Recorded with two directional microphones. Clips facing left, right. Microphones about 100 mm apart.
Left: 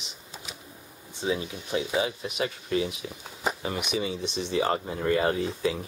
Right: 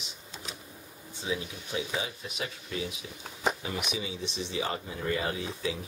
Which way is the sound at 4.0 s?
55° left (ahead or behind).